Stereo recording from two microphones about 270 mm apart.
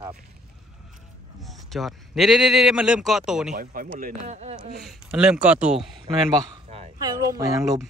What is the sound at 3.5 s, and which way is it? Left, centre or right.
A man's voice, right.